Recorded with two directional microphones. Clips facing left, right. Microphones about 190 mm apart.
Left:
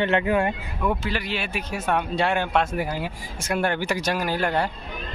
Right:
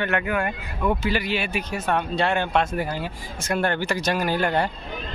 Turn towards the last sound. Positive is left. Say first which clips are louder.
# right 1 dB
turn(degrees=0)  # may be behind; listen again after turning